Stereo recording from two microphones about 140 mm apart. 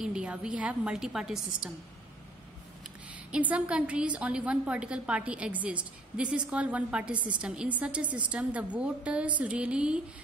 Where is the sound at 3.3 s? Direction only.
10° right (ahead or behind).